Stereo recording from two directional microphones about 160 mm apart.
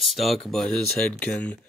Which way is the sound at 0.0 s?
Centre (ahead or behind).